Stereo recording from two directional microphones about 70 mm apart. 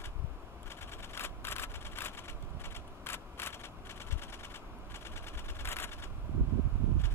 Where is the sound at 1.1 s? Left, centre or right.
Left.